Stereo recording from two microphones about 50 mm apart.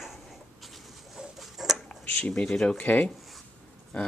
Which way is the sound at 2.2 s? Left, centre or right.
Left.